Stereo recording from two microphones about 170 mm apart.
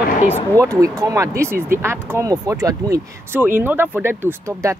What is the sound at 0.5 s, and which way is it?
Speech, 20° right (ahead or behind).